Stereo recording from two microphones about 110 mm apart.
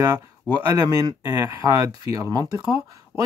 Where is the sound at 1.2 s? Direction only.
25° right (ahead or behind).